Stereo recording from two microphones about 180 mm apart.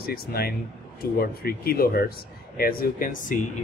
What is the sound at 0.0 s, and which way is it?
Speech, 55° left (ahead or behind).